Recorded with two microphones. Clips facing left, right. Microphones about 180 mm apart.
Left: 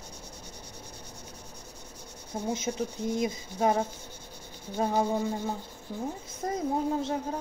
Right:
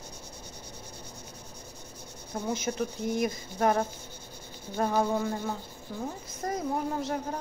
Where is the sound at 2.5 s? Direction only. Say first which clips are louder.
Even; 20° left (ahead or behind).